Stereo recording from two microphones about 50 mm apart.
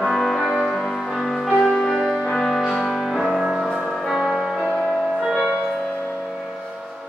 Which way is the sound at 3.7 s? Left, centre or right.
Centre.